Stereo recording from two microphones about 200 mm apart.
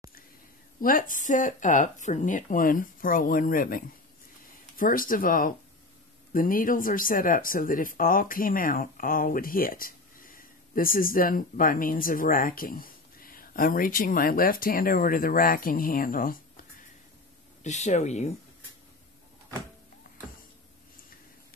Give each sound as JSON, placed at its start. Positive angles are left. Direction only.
{"t": 0.7, "sound": "speech", "side_deg": 45}
{"t": 17.6, "sound": "speech", "side_deg": 35}